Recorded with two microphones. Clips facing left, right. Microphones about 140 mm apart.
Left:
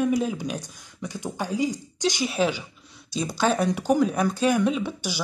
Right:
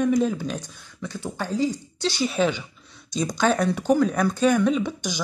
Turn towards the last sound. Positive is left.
turn(degrees=10)  # may be behind; listen again after turning